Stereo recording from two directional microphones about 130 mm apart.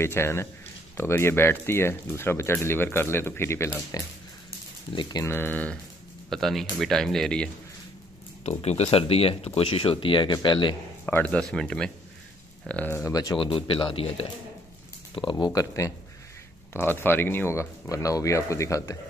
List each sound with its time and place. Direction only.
0.0 s speech: 20° left (ahead or behind)
4.9 s speech: 30° left (ahead or behind)
5.3 s speech: 15° left (ahead or behind)
6.3 s speech: centre (ahead or behind)
8.5 s speech: 55° left (ahead or behind); by 10.8 s 40° left (ahead or behind)
11.1 s speech: 10° left (ahead or behind); by 14.2 s 45° left (ahead or behind)
15.3 s speech: 25° left (ahead or behind)